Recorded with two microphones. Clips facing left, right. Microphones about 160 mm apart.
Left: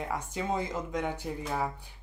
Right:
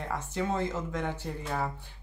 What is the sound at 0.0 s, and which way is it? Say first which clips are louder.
Speech: right 1 dB; 10° left (ahead or behind).